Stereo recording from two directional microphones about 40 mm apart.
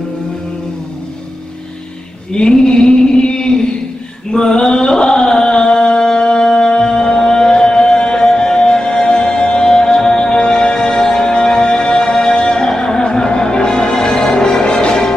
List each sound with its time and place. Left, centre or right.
2.3 s a sound: centre
8.3 s music: centre
8.5 s music: left